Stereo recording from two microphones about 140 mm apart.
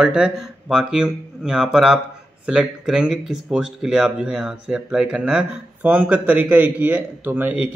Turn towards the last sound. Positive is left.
turn(degrees=-10)  # may be behind; listen again after turning